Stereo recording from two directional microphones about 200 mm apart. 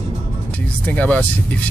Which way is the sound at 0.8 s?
5° left (ahead or behind).